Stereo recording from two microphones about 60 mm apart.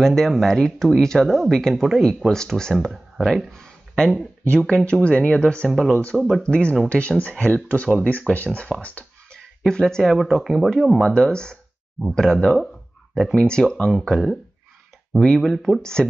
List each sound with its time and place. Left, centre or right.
0.0 s speech: centre
4.6 s speech: centre
5.7 s speech: centre
6.4 s speech: centre
8.3 s speech: right
8.8 s a sound: left
9.7 s speech: centre
10.4 s speech: centre
11.0 s speech: centre
14.0 s speech: centre
15.8 s speech: centre